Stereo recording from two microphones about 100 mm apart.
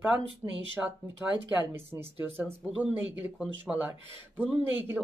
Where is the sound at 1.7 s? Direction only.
25° right (ahead or behind).